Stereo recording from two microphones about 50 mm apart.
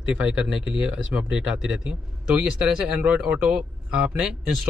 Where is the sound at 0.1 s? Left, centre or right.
Centre.